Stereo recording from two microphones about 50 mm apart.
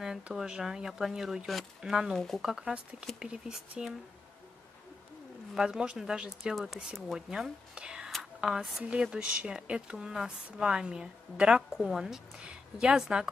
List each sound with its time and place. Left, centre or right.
0.0 s a woman's voice: centre
2.1 s speech: centre
2.4 s a woman's voice: centre
5.7 s a woman's voice: centre
6.5 s a woman's voice: centre
8.2 s a sound: centre
9.0 s a woman's voice: centre